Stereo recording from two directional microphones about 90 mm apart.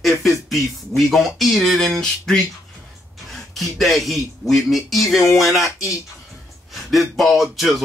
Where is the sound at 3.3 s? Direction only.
Centre (ahead or behind).